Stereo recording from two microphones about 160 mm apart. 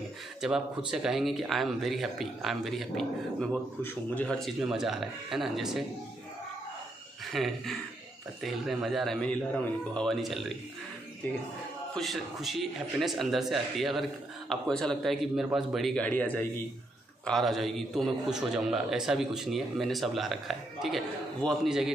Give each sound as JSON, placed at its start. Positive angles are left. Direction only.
{"t": 0.4, "sound": "a man's voice", "side_deg": -5}
{"t": 7.3, "sound": "a man's voice", "side_deg": 0}
{"t": 11.9, "sound": "a man's voice", "side_deg": 0}